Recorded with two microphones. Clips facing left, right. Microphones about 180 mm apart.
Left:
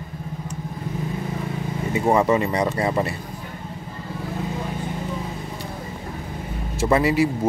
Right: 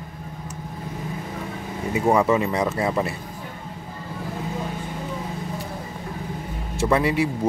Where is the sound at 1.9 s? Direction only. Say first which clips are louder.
Even; centre (ahead or behind).